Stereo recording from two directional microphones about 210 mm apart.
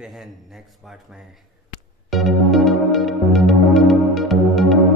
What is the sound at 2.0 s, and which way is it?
Music, centre (ahead or behind).